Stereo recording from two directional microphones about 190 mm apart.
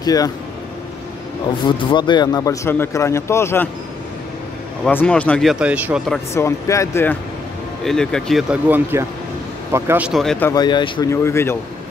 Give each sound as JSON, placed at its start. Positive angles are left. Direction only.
{"t": 0.0, "sound": "speech", "side_deg": 20}
{"t": 1.7, "sound": "a man's voice", "side_deg": 25}
{"t": 4.8, "sound": "speech", "side_deg": 5}
{"t": 6.3, "sound": "a man's voice", "side_deg": 15}
{"t": 10.4, "sound": "a man's voice", "side_deg": 20}